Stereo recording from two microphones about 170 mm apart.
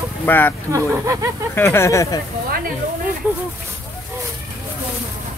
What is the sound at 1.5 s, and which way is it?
Speech, 15° left (ahead or behind).